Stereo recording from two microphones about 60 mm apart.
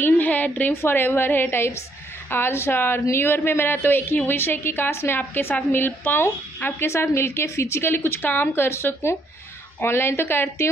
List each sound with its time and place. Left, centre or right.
0.0 s a sound: left
0.7 s a woman's voice: left
8.6 s a woman's voice: left